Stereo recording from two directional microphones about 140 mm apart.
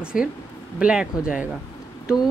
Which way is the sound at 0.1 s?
85° left.